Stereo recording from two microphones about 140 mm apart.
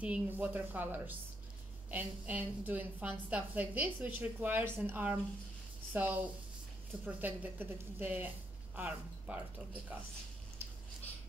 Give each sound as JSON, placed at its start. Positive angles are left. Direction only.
{"t": 0.0, "sound": "a woman's voice", "side_deg": -10}